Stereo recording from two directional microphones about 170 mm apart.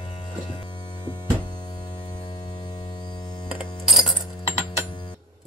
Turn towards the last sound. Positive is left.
turn(degrees=30)  # may be behind; listen again after turning